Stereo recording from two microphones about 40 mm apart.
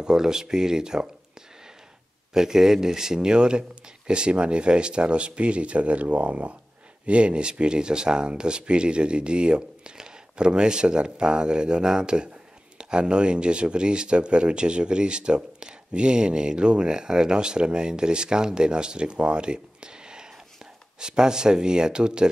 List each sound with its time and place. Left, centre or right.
0.0 s speech: centre
2.3 s speech: centre